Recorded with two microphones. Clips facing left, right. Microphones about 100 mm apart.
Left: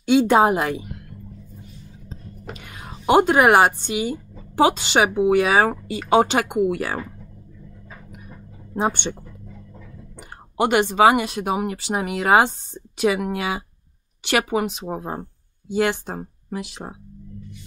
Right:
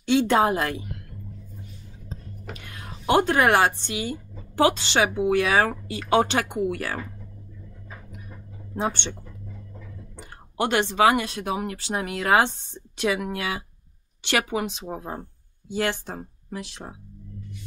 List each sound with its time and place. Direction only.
0.1 s speech: 10° left (ahead or behind)
2.5 s speech: 10° left (ahead or behind)
8.3 s a sound: 15° left (ahead or behind)
10.1 s speech: 10° left (ahead or behind)